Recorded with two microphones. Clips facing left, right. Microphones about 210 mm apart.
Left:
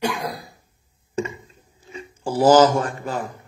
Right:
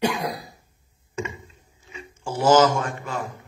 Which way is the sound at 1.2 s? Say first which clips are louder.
Left 5 dB; 35° left (ahead or behind).